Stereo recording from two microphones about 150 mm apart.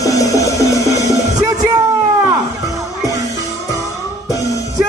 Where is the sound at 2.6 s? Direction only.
20° right (ahead or behind).